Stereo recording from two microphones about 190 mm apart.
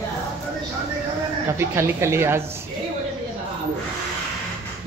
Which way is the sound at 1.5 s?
15° right (ahead or behind).